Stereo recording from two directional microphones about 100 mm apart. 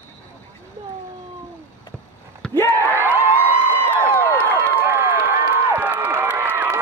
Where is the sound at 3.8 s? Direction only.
20° left (ahead or behind).